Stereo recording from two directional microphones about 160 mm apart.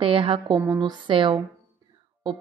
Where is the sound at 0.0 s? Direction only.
35° right (ahead or behind).